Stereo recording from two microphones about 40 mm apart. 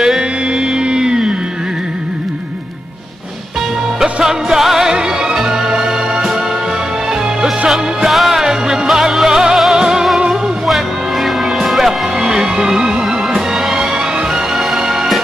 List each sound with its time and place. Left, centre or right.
0.0 s music: centre
4.0 s music: centre
7.6 s music: centre
10.7 s music: centre
12.2 s music: centre